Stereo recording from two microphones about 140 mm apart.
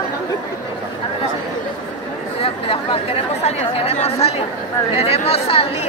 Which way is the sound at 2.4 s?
40° left (ahead or behind).